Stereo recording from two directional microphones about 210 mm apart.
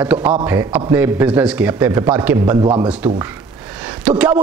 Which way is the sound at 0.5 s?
15° right (ahead or behind).